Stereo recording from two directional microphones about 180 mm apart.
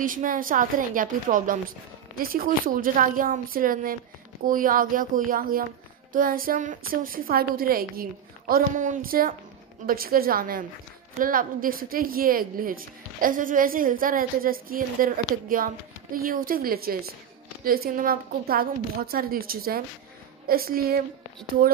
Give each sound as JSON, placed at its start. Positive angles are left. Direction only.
{"t": 0.0, "sound": "a woman's voice", "side_deg": -50}